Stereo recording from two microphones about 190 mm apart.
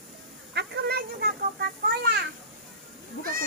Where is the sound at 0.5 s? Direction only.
55° right (ahead or behind).